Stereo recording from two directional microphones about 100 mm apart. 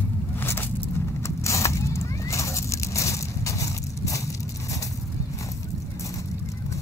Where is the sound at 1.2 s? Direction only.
30° left (ahead or behind).